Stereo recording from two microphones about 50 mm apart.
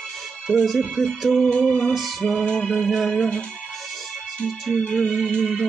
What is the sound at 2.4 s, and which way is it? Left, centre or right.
Music, centre.